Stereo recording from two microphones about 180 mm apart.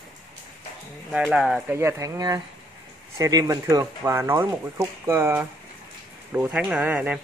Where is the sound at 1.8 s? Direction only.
15° right (ahead or behind).